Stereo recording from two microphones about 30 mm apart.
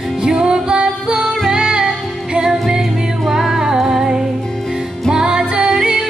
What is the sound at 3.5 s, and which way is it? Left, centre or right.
Music, right.